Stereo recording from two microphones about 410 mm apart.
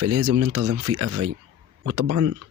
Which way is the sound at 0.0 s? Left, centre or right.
Right.